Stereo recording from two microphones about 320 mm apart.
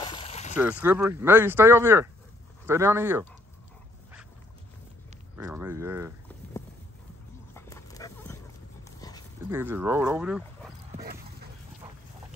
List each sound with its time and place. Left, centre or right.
0.0 s a sound: centre
0.6 s speech: centre
5.3 s speech: centre
7.5 s dog: centre
9.5 s speech: centre
11.0 s dog: right